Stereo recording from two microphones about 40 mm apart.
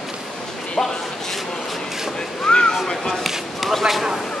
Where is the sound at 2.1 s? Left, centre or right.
Centre.